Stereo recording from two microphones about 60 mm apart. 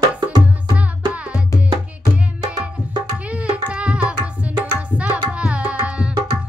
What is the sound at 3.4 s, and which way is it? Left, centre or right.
Music, centre.